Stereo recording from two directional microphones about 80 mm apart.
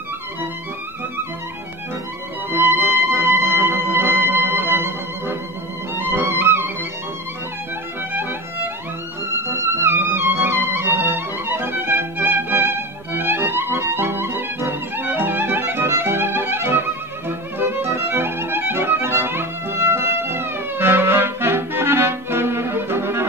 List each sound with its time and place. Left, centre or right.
2.5 s music: right
8.1 s music: right
9.4 s music: right